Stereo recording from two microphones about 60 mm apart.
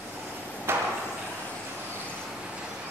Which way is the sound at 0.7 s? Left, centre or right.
Right.